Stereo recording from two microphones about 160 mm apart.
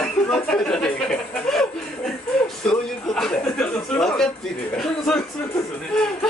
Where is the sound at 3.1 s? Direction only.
5° left (ahead or behind).